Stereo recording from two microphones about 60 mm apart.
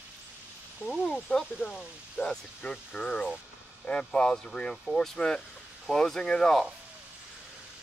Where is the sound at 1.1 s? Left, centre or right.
Centre.